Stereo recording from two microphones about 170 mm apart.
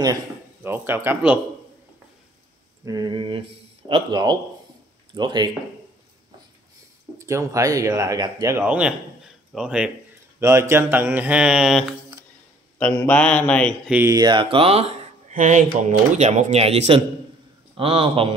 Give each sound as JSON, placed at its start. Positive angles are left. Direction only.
{"t": 0.7, "sound": "speech", "side_deg": -10}
{"t": 2.8, "sound": "speech", "side_deg": -20}
{"t": 7.2, "sound": "speech", "side_deg": -15}
{"t": 10.4, "sound": "speech", "side_deg": -15}
{"t": 12.7, "sound": "speech", "side_deg": 10}
{"t": 13.8, "sound": "speech", "side_deg": -10}
{"t": 14.1, "sound": "speech", "side_deg": -25}